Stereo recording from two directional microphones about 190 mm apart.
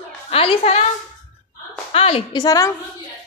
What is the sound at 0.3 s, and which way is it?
Speech, 30° left (ahead or behind).